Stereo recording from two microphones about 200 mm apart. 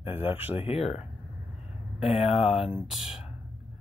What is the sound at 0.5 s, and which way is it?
Speech, 30° left (ahead or behind).